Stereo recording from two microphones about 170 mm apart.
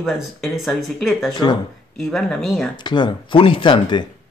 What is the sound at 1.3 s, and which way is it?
Speech, 25° left (ahead or behind).